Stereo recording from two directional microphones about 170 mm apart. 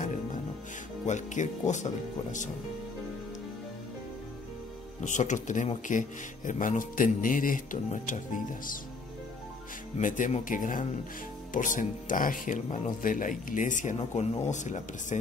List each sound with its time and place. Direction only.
1.0 s speech: 45° left (ahead or behind)
5.0 s speech: 45° left (ahead or behind)
9.9 s speech: 50° left (ahead or behind)